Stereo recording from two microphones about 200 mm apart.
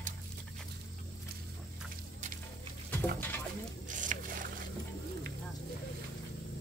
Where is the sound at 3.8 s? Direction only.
40° right (ahead or behind).